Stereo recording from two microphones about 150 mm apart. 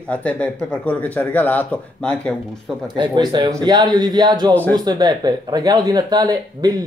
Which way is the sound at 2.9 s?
30° right (ahead or behind).